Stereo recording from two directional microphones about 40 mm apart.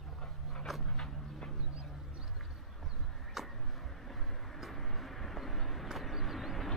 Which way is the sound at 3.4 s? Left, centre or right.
Centre.